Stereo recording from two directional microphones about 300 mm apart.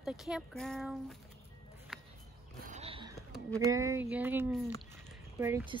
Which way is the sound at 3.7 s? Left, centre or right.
Centre.